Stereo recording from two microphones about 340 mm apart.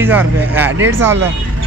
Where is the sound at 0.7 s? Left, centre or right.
Right.